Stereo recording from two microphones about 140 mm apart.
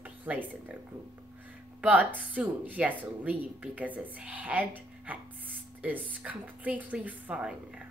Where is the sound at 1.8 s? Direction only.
10° right (ahead or behind).